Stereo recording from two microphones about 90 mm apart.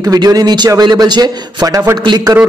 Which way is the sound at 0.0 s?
45° right (ahead or behind).